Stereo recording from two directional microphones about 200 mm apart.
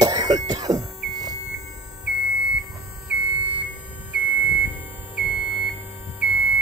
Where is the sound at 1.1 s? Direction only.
20° right (ahead or behind).